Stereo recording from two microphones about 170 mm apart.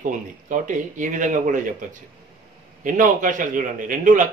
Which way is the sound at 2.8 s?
50° right (ahead or behind).